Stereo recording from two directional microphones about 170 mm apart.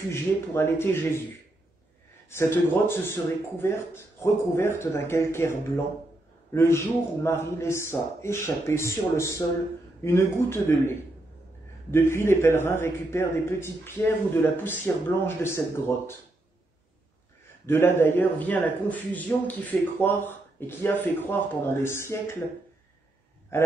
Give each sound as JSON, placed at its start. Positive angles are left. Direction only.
{"t": 0.1, "sound": "a man's voice", "side_deg": 15}
{"t": 2.2, "sound": "a man's voice", "side_deg": 15}
{"t": 17.6, "sound": "a man's voice", "side_deg": 15}